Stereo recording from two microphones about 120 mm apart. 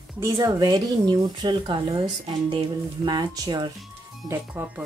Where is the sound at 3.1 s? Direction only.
35° right (ahead or behind).